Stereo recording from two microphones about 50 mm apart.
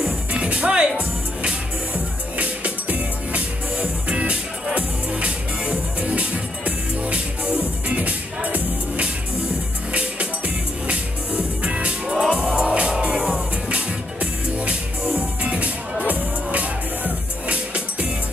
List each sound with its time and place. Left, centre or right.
0.0 s music: right